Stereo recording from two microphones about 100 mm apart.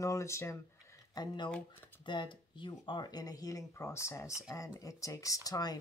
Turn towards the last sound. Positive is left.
turn(degrees=40)  # may be behind; listen again after turning